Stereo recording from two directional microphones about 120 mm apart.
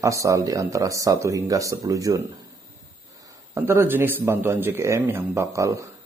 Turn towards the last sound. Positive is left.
turn(degrees=-25)  # may be behind; listen again after turning